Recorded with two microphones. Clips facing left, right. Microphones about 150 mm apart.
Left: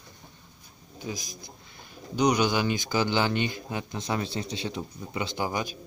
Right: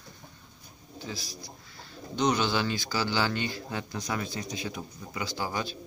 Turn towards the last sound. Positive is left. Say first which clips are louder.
# left 3 dB
turn(degrees=15)  # may be behind; listen again after turning